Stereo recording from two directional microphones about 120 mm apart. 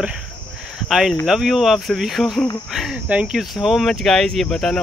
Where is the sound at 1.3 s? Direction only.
Centre (ahead or behind).